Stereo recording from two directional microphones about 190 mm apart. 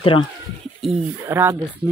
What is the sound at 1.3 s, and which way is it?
Speech, 15° right (ahead or behind).